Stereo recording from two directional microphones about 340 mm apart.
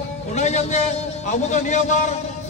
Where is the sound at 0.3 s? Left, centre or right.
Centre.